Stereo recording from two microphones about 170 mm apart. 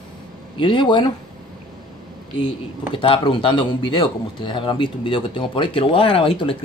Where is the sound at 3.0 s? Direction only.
30° left (ahead or behind).